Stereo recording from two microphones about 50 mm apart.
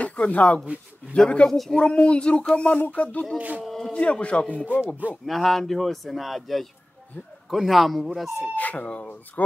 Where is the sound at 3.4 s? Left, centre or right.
Right.